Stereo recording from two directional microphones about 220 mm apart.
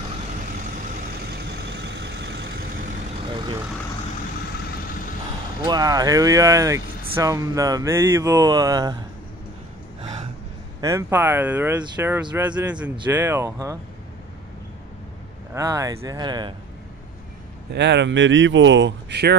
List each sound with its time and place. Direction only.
1.3 s vehicle: 50° right (ahead or behind)
3.3 s vehicle: 25° right (ahead or behind)
5.7 s speech: 15° right (ahead or behind)
10.8 s speech: 15° right (ahead or behind)
15.5 s speech: 15° right (ahead or behind)
17.7 s speech: 50° right (ahead or behind)